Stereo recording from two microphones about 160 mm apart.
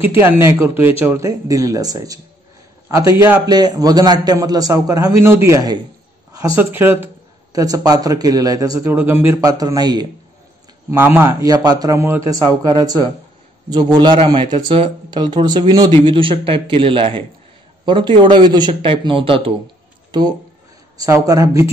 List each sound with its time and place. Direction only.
0.0 s speech: 15° right (ahead or behind)
3.4 s speech: 25° right (ahead or behind)
10.9 s speech: 15° right (ahead or behind)